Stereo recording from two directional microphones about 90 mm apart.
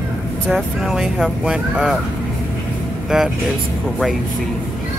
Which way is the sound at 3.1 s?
5° right (ahead or behind).